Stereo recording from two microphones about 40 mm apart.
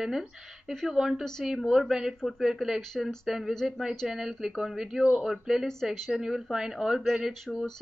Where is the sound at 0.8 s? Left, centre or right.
Centre.